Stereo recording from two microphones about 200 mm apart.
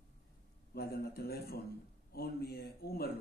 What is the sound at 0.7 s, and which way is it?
A man's voice, 50° left (ahead or behind).